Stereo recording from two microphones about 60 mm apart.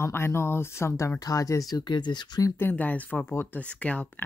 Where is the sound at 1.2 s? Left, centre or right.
Left.